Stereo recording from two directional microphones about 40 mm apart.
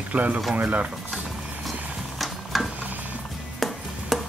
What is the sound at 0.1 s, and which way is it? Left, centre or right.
Speech, right.